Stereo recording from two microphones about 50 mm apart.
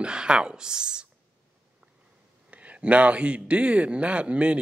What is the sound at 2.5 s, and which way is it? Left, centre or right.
Speech, right.